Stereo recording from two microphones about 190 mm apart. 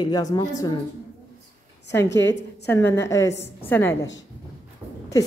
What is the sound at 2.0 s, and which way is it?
Speech, 65° left (ahead or behind).